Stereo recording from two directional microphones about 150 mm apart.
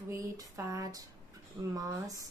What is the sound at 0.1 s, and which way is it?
Speech, 20° right (ahead or behind).